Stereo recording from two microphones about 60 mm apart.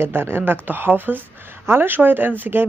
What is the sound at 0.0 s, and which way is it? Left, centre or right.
Speech, right.